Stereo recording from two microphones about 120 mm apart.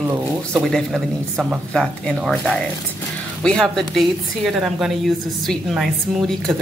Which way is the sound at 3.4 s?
5° left (ahead or behind).